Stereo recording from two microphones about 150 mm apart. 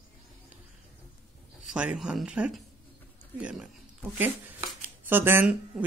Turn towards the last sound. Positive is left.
turn(degrees=-10)  # may be behind; listen again after turning